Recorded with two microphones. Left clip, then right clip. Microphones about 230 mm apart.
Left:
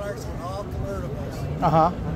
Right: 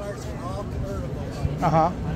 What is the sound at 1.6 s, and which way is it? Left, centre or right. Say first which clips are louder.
Speech: left 1 dB; centre.